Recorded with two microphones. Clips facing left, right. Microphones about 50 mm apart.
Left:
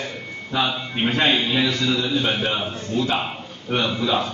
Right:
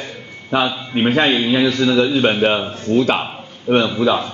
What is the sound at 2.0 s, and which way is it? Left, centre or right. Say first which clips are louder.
Speech: right 7 dB; right.